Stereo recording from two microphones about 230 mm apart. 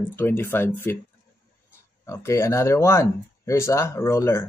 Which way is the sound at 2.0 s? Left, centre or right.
Centre.